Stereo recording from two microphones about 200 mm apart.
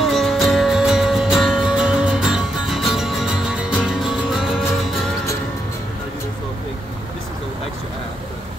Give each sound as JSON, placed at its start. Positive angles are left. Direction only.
{"t": 0.0, "sound": "music", "side_deg": 0}